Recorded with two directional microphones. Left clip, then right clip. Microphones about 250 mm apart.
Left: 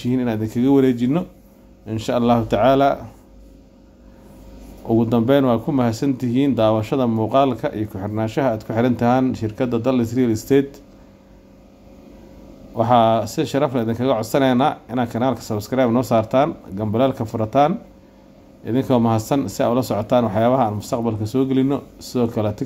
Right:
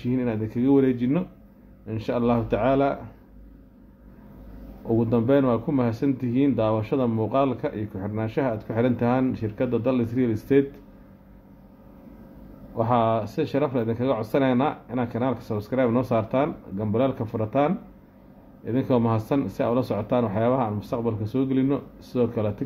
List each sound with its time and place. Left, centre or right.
0.0 s speech: centre
4.8 s speech: centre
12.7 s speech: centre